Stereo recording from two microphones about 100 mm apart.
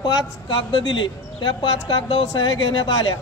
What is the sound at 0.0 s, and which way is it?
Speech, 45° left (ahead or behind).